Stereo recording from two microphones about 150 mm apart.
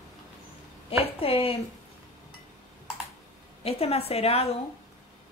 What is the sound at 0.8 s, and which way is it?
Speech, 40° left (ahead or behind).